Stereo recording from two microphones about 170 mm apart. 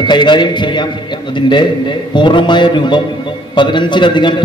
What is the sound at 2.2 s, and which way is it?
A man's voice, 25° left (ahead or behind).